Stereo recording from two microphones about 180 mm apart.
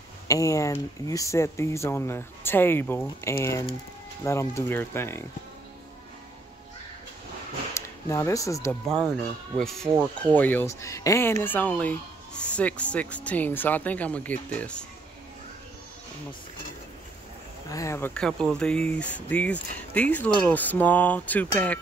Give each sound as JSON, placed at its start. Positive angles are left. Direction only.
{"t": 0.3, "sound": "speech", "side_deg": 15}
{"t": 8.1, "sound": "speech", "side_deg": 15}
{"t": 8.8, "sound": "speech", "side_deg": 0}
{"t": 17.6, "sound": "speech", "side_deg": 15}